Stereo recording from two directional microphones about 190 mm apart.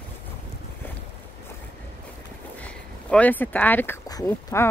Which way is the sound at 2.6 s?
5° left (ahead or behind).